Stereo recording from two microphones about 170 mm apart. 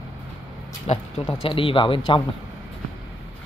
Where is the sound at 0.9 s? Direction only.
40° left (ahead or behind).